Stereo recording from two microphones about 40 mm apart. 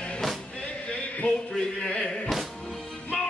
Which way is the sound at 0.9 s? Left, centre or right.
Left.